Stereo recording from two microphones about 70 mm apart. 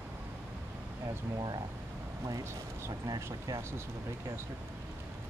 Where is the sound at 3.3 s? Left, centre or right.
Right.